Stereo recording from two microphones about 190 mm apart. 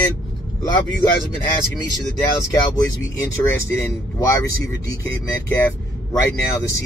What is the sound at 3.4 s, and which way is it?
Speech, 15° left (ahead or behind).